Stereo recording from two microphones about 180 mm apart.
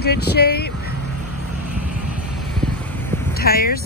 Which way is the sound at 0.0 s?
65° left (ahead or behind).